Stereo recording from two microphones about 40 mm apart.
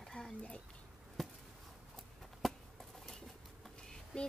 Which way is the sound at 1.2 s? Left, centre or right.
Centre.